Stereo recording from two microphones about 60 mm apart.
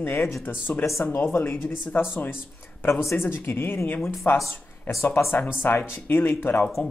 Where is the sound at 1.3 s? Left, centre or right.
Left.